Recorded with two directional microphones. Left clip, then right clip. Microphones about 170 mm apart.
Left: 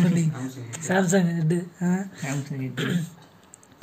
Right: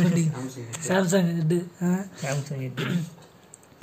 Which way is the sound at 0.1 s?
5° right (ahead or behind).